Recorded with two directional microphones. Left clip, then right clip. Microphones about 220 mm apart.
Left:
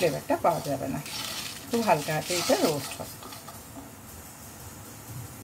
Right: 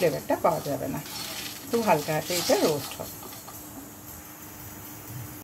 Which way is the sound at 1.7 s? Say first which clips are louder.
Right 1 dB; centre (ahead or behind).